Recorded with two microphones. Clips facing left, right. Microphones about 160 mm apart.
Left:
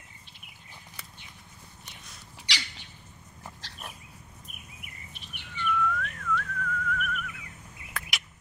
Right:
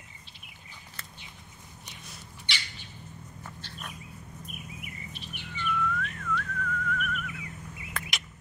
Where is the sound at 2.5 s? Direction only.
90° left.